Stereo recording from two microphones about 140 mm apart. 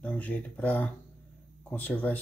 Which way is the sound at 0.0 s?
10° left (ahead or behind).